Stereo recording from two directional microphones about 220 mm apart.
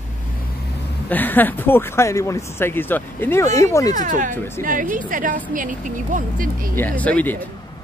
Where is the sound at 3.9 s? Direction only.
35° right (ahead or behind).